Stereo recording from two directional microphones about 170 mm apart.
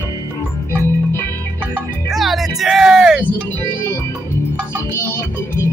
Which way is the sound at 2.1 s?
Centre (ahead or behind).